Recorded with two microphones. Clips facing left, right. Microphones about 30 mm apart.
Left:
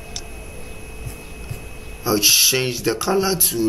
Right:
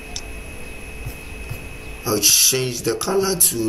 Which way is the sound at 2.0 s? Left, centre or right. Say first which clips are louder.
Left 2 dB; centre.